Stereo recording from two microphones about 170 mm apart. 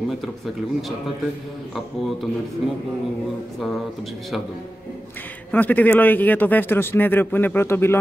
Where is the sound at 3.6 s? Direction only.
Centre (ahead or behind).